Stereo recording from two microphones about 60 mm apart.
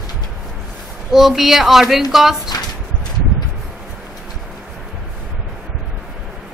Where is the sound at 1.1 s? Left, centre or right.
Centre.